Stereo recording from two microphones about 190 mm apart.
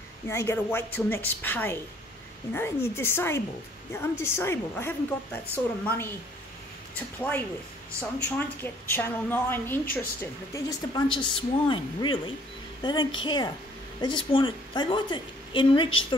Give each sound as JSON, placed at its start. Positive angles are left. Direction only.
{"t": 0.3, "sound": "a woman's voice", "side_deg": 15}
{"t": 7.2, "sound": "a woman's voice", "side_deg": 10}
{"t": 10.5, "sound": "a woman's voice", "side_deg": 20}